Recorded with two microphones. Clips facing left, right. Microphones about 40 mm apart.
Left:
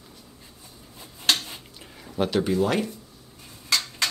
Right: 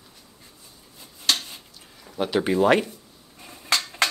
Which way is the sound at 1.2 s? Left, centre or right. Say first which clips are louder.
Left 1 dB; left.